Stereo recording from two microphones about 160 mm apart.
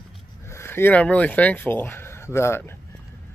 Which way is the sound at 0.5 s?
15° left (ahead or behind).